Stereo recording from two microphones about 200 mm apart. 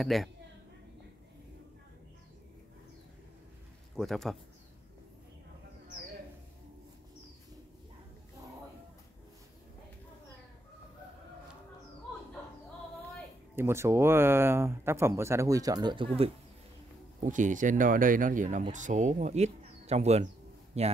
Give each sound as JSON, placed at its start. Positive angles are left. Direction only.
{"t": 0.0, "sound": "a man's voice", "side_deg": 0}
{"t": 3.9, "sound": "a man's voice", "side_deg": 0}
{"t": 13.6, "sound": "speech", "side_deg": -10}
{"t": 17.2, "sound": "speech", "side_deg": -40}